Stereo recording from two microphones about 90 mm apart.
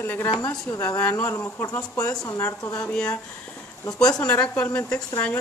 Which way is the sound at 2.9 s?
10° left (ahead or behind).